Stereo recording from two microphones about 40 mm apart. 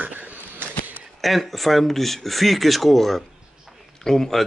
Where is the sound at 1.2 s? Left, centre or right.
Centre.